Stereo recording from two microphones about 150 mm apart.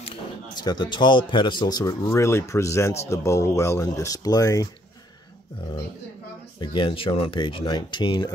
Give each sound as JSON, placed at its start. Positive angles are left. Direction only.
{"t": 0.0, "sound": "speech", "side_deg": 35}
{"t": 6.6, "sound": "speech", "side_deg": 35}